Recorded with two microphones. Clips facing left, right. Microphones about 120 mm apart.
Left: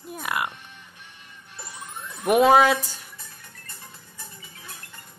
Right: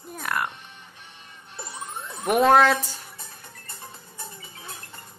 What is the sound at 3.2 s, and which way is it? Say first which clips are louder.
Music: right 3 dB; 30° right (ahead or behind).